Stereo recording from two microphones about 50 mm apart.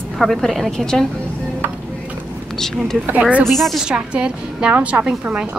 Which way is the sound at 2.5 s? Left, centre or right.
Centre.